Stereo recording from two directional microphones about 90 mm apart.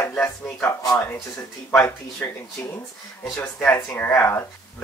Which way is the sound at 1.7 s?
30° left (ahead or behind).